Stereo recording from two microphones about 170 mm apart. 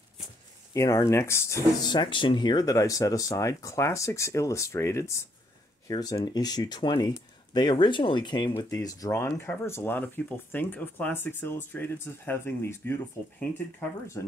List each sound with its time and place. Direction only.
0.7 s speech: 20° left (ahead or behind)
1.9 s speech: 30° left (ahead or behind)